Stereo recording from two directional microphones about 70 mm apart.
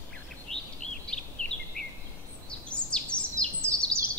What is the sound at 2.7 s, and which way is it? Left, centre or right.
Bird vocalization, centre.